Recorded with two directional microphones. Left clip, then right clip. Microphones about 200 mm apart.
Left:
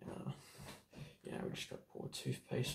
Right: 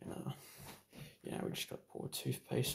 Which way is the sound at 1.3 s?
40° right (ahead or behind).